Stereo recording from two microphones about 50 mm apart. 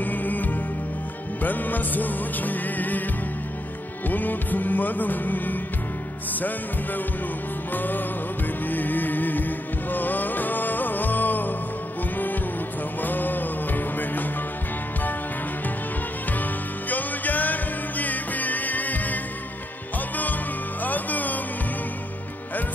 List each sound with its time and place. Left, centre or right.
0.0 s music: left
4.1 s music: left
7.7 s music: left
13.0 s music: left
16.9 s music: left
20.8 s music: left